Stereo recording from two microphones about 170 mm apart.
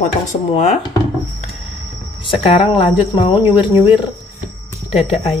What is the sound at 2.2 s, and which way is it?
Speech, 30° left (ahead or behind).